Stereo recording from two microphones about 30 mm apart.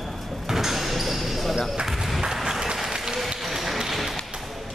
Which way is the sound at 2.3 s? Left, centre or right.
Centre.